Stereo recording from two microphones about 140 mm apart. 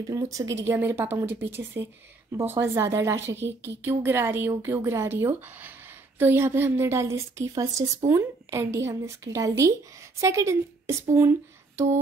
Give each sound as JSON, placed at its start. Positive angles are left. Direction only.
{"t": 0.1, "sound": "a woman's voice", "side_deg": -25}